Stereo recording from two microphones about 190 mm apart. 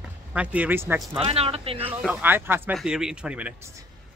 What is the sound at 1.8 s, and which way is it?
Speech, 10° right (ahead or behind).